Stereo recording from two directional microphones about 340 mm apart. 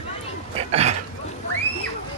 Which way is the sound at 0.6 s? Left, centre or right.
Centre.